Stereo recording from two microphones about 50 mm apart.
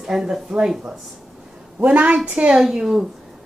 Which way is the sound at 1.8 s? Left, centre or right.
Right.